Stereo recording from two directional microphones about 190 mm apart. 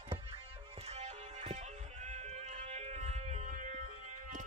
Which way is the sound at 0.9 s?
35° right (ahead or behind).